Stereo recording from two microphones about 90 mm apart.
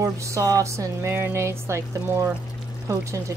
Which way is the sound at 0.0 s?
35° right (ahead or behind).